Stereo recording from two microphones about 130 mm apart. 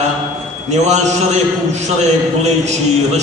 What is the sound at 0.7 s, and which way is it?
A man's voice, 60° right (ahead or behind).